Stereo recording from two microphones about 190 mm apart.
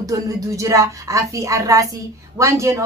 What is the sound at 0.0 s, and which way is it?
A woman's voice, 15° right (ahead or behind).